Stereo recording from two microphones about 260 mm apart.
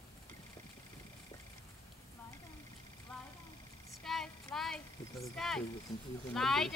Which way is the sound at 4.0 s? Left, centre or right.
Centre.